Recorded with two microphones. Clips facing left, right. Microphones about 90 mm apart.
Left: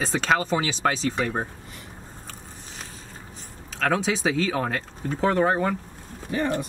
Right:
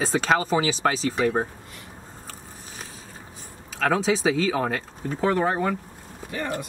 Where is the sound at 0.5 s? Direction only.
15° right (ahead or behind).